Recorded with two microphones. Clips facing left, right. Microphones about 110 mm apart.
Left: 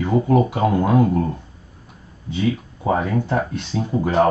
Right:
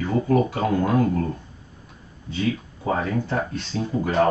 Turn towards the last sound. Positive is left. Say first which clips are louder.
# left 3 dB
turn(degrees=20)  # may be behind; listen again after turning